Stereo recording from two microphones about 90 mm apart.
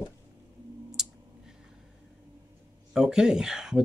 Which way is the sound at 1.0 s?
5° right (ahead or behind).